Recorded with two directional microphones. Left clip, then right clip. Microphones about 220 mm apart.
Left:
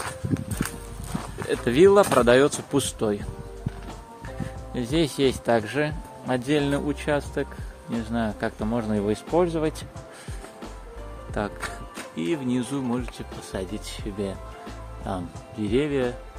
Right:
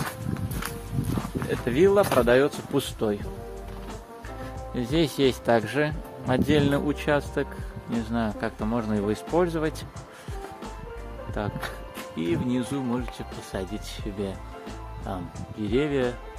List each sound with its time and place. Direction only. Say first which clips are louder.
1.5 s speech: left 4 dB; 20° left (ahead or behind)
2.8 s speech: left 1 dB; 10° left (ahead or behind)
4.7 s speech: left 1 dB; centre (ahead or behind)
11.4 s speech: left 3 dB; 10° left (ahead or behind)